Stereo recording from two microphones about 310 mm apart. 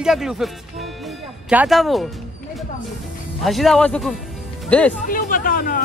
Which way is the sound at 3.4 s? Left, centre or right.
Centre.